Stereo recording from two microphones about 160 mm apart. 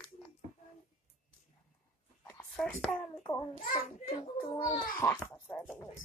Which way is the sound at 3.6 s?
60° left (ahead or behind).